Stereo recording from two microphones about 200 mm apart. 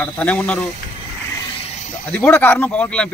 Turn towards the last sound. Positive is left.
turn(degrees=5)  # may be behind; listen again after turning